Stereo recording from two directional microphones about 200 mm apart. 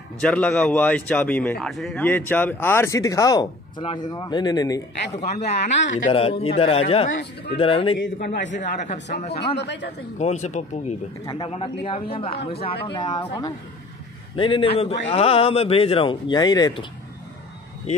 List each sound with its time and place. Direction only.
0.2 s speech: 5° left (ahead or behind)
5.1 s a man's voice: 35° left (ahead or behind)
5.8 s speech: 70° left (ahead or behind)
6.0 s a man's voice: 30° left (ahead or behind)
8.0 s a man's voice: 65° left (ahead or behind)
8.5 s a man's voice: 35° left (ahead or behind)
11.2 s a man's voice: 25° left (ahead or behind)
14.3 s a man's voice: 25° left (ahead or behind)